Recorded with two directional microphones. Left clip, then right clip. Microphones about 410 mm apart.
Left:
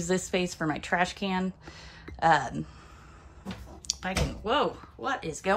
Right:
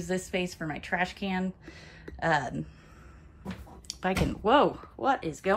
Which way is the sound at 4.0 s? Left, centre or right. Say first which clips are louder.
Right 5 dB; centre.